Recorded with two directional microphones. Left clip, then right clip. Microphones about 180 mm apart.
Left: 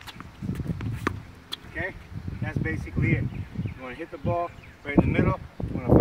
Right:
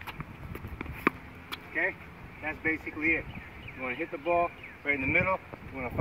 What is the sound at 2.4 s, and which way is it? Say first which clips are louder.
Speech: right 2 dB; 15° left (ahead or behind).